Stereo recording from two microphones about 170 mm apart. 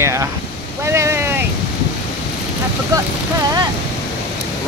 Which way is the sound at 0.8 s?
15° right (ahead or behind).